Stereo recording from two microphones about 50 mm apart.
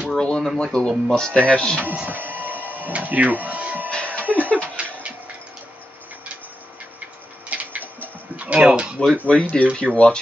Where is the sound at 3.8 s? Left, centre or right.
Left.